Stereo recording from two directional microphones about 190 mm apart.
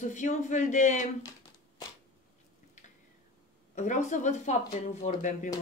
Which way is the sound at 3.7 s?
40° left (ahead or behind).